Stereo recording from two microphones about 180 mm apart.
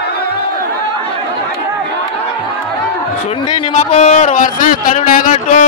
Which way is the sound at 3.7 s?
40° left (ahead or behind).